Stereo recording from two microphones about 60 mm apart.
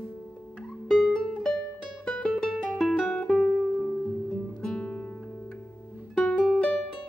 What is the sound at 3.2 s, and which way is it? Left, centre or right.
Music, centre.